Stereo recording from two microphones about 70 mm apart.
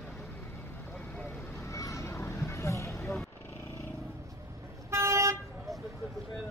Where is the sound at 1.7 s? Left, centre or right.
Left.